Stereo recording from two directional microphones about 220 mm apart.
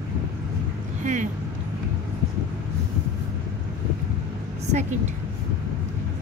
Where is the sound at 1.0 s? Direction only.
35° right (ahead or behind).